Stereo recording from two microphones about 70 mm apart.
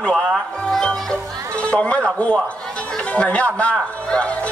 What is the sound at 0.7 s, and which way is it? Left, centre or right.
Music, centre.